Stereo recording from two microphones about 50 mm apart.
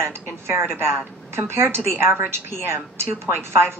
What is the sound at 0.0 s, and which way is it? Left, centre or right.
A woman's voice, right.